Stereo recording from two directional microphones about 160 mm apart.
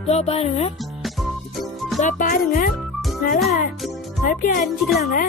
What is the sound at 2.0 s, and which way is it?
Speech, 55° left (ahead or behind).